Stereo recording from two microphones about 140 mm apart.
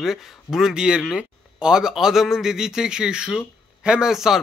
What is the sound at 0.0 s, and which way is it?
A man's voice, centre (ahead or behind).